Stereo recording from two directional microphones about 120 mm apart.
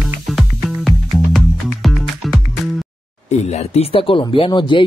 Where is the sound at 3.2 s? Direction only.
65° left (ahead or behind); by 4.8 s 45° left (ahead or behind).